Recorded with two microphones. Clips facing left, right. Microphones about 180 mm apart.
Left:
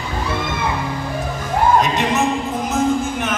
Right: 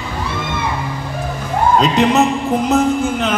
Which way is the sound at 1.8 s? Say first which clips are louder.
Right 5 dB; 65° right (ahead or behind).